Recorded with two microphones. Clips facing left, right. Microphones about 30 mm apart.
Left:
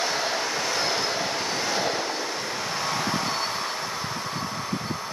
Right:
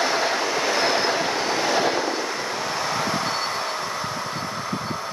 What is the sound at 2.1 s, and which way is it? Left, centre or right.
Train, centre.